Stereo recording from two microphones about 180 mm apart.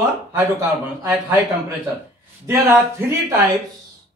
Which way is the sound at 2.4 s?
20° right (ahead or behind).